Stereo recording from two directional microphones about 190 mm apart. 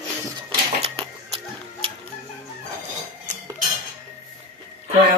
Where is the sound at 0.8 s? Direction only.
30° right (ahead or behind).